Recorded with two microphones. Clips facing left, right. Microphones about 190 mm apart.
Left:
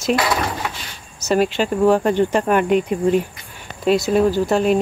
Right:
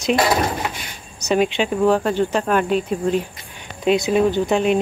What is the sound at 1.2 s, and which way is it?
Speech, 5° left (ahead or behind).